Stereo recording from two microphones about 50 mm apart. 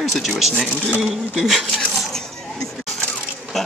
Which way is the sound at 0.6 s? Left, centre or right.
Centre.